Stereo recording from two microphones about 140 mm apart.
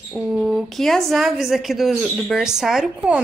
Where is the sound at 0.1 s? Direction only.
5° right (ahead or behind).